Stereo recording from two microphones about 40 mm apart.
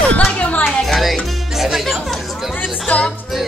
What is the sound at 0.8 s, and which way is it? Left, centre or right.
Speech, centre.